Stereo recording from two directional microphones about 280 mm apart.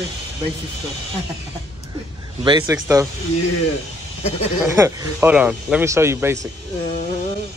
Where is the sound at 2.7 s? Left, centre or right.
Centre.